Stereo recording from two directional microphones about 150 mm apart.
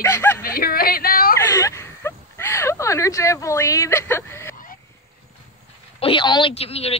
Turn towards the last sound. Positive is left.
turn(degrees=40)  # may be behind; listen again after turning